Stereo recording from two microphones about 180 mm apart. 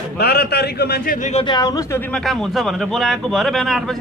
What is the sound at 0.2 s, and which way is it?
Speech, 65° left (ahead or behind).